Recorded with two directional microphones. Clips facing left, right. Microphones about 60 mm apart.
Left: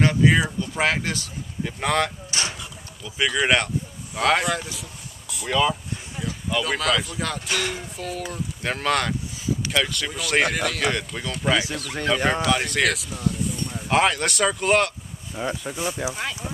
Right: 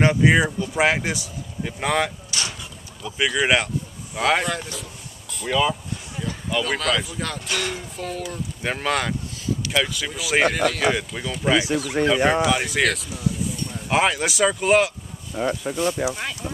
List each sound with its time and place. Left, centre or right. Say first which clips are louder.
0.0 s speech: right 2 dB; centre
15.3 s speech: right 4 dB; centre